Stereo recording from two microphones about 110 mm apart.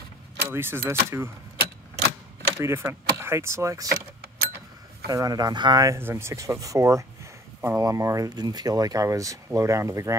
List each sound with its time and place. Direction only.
0.5 s speech: 20° right (ahead or behind)
2.5 s speech: 25° right (ahead or behind)
5.0 s speech: 35° right (ahead or behind)